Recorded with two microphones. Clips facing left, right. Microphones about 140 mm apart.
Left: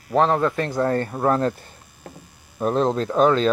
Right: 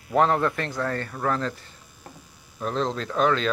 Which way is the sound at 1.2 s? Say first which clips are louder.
Left 6 dB; 45° left (ahead or behind).